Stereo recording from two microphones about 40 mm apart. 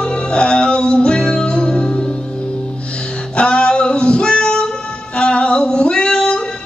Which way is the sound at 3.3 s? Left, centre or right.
Left.